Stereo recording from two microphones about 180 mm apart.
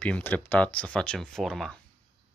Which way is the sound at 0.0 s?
10° left (ahead or behind).